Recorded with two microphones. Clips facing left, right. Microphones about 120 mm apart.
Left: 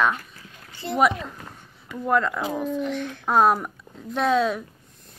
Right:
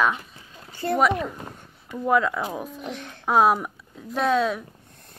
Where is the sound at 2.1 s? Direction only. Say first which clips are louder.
Right 1 dB; 5° right (ahead or behind).